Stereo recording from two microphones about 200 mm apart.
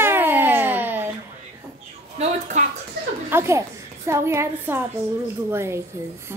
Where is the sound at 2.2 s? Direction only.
30° right (ahead or behind).